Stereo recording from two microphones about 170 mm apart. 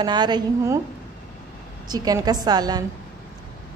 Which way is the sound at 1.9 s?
25° right (ahead or behind).